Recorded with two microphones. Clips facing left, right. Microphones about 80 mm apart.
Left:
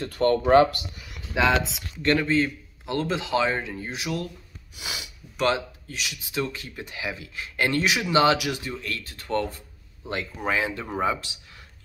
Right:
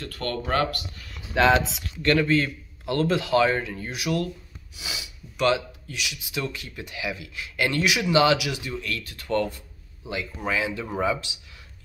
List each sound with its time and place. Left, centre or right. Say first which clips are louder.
0.0 s speech: left 9 dB; left
1.4 s speech: right 3 dB; centre
2.0 s a man's voice: right 1 dB; left
4.7 s speech: left 1 dB; left